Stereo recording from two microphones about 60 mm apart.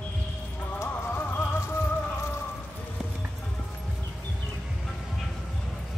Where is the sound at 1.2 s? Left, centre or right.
Left.